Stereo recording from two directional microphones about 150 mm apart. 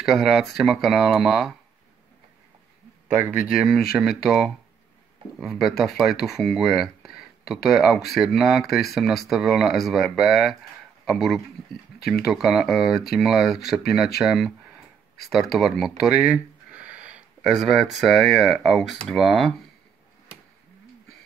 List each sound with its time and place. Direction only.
0.0 s speech: centre (ahead or behind)
3.2 s speech: 10° right (ahead or behind)